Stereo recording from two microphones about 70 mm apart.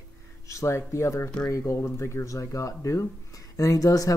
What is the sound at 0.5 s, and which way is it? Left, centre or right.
Speech, left.